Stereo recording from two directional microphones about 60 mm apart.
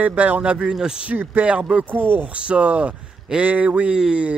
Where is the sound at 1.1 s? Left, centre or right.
Right.